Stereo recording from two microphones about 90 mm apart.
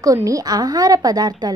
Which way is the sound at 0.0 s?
40° right (ahead or behind).